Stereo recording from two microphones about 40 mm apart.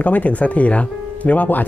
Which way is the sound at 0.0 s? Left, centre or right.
Left.